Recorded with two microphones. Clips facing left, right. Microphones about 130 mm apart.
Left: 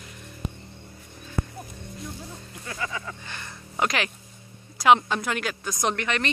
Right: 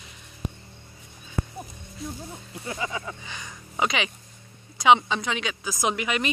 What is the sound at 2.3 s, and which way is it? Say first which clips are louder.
Speech: right 3 dB; 20° right (ahead or behind).